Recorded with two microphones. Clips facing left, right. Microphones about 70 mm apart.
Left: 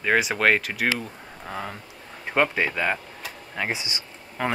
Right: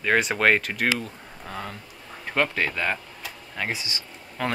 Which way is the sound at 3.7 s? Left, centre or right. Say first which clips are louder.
Left 1 dB; left.